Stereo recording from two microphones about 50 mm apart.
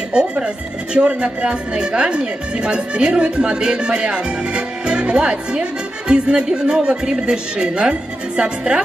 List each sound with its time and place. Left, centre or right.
0.1 s speech: centre